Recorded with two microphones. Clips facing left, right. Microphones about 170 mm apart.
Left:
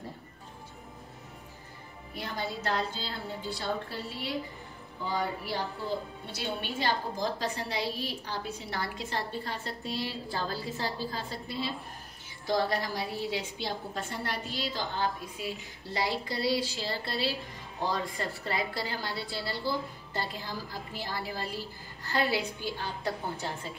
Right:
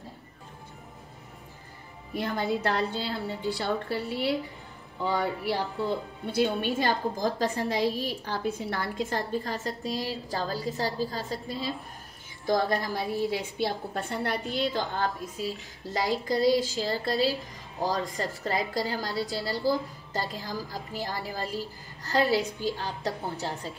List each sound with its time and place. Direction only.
2.1 s a woman's voice: 55° right (ahead or behind); by 23.7 s 40° right (ahead or behind)